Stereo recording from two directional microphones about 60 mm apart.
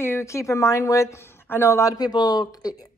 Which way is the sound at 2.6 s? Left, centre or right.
Left.